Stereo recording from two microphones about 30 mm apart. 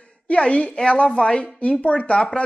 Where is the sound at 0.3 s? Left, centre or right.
Left.